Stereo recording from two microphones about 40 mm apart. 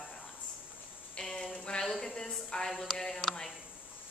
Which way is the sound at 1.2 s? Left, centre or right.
Centre.